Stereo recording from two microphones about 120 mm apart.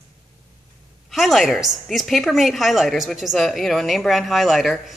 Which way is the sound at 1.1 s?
Centre (ahead or behind).